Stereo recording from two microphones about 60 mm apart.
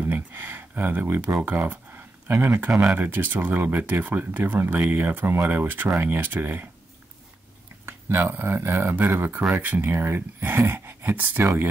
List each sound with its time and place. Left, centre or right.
0.0 s a sound: right
1.4 s speech: right
2.2 s speech: right
7.8 s speech: right